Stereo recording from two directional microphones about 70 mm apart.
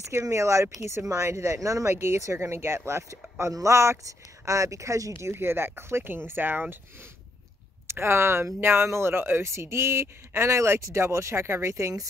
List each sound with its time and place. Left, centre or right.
0.2 s speech: right
7.9 s speech: right